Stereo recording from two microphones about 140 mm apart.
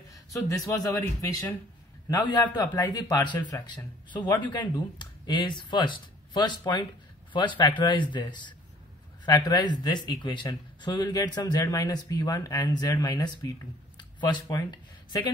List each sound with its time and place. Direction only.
0.8 s speech: 25° left (ahead or behind)